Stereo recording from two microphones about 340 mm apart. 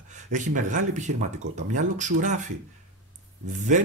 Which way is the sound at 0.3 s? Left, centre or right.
Right.